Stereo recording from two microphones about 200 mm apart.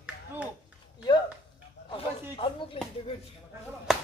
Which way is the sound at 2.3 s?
30° left (ahead or behind).